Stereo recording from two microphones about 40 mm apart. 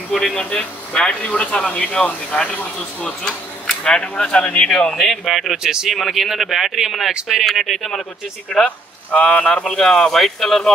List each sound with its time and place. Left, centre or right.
0.1 s speech: centre
0.5 s speech: left
3.0 s speech: left
5.1 s speech: centre
5.6 s speech: centre
5.9 s speech: centre
8.6 s speech: left; by 10.7 s centre